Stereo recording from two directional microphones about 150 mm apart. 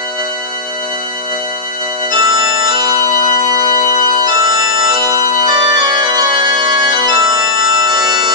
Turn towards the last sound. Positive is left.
turn(degrees=-30)  # may be behind; listen again after turning